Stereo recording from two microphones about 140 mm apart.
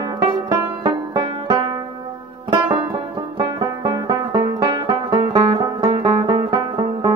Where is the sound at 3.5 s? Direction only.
30° right (ahead or behind).